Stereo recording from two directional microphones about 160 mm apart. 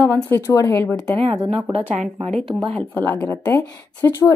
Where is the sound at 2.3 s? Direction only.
Centre (ahead or behind).